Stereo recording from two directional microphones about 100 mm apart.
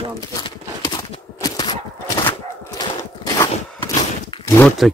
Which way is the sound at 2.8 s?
40° left (ahead or behind).